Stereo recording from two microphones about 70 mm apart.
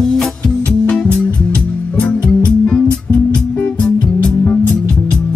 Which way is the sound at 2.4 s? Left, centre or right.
Centre.